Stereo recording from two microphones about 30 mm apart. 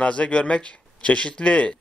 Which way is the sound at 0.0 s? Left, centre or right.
Left.